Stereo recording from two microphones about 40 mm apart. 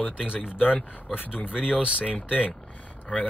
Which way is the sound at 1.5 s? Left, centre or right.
Right.